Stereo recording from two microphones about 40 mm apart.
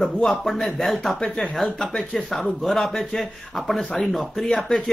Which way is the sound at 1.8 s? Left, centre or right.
Centre.